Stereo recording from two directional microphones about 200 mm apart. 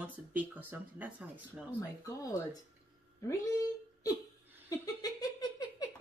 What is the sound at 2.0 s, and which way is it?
Speech, 20° left (ahead or behind).